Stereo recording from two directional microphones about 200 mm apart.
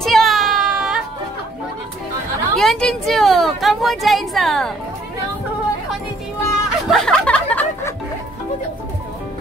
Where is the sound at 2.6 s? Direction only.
Centre (ahead or behind).